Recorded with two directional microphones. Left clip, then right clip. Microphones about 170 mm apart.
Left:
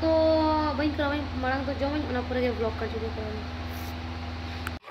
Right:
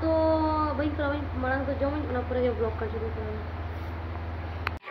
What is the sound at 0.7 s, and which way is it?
Speech, 25° left (ahead or behind).